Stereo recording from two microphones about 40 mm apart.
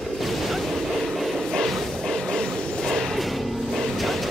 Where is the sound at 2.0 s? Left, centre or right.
Centre.